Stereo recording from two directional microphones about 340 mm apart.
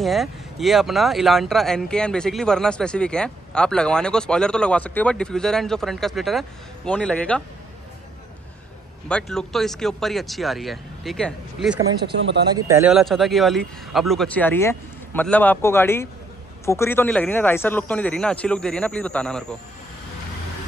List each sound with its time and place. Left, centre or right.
0.0 s speech: centre
9.1 s speech: centre
12.2 s speech: right
12.5 s speech: centre